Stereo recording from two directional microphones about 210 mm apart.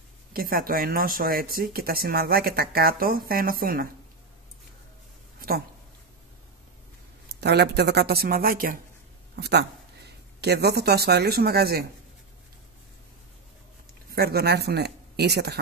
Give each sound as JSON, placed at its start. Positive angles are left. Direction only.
{"t": 0.3, "sound": "speech", "side_deg": -45}
{"t": 7.3, "sound": "speech", "side_deg": -50}
{"t": 14.1, "sound": "speech", "side_deg": -50}